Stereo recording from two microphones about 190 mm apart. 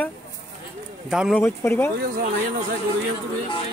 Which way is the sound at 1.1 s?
Centre (ahead or behind).